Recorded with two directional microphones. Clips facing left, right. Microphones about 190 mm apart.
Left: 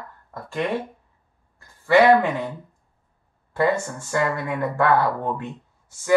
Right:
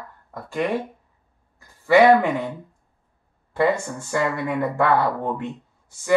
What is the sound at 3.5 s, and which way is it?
Speech, 20° right (ahead or behind).